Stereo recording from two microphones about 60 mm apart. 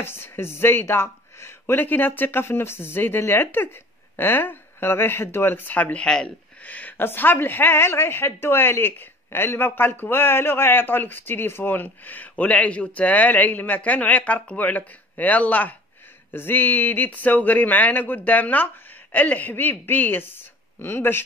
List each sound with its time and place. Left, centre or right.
0.0 s speech: left
1.8 s speech: left
6.0 s speech: centre
6.6 s speech: left